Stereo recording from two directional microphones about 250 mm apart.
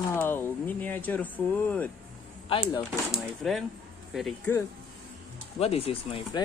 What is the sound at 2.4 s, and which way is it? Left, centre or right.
Speech, centre.